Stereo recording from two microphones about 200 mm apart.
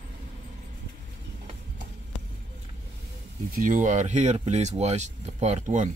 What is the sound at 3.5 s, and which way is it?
Speech, 40° right (ahead or behind).